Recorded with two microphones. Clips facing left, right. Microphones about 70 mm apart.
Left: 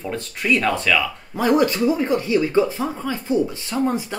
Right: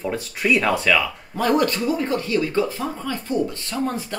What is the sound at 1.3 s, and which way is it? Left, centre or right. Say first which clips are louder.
Speech: left 2 dB; centre.